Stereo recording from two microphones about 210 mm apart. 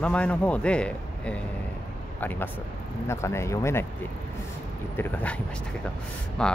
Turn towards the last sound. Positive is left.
turn(degrees=5)  # may be behind; listen again after turning